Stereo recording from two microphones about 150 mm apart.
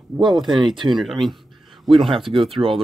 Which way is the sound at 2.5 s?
35° right (ahead or behind).